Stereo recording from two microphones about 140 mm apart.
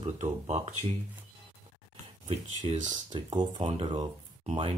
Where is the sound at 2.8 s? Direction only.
30° right (ahead or behind).